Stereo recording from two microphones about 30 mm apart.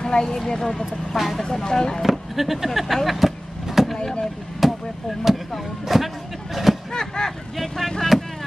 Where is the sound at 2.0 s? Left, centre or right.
Centre.